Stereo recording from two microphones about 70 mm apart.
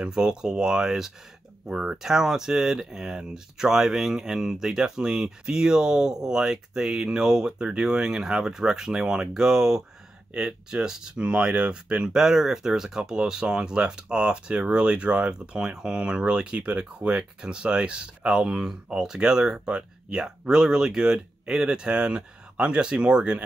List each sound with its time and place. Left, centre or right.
0.0 s speech: centre